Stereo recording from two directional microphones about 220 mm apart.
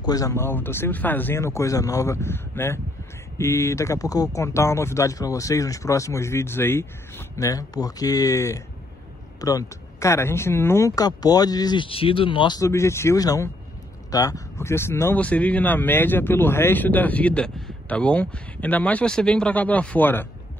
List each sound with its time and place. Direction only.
0.0 s speech: 15° left (ahead or behind)